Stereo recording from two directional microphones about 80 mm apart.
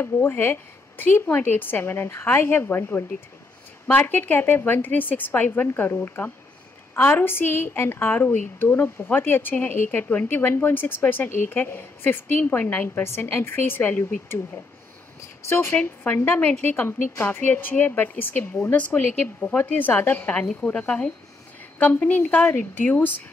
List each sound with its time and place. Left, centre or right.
0.0 s a woman's voice: left
15.4 s a woman's voice: left
15.7 s a woman's voice: left